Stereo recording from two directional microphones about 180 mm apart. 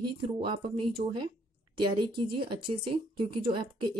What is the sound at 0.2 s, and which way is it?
Speech, 25° right (ahead or behind).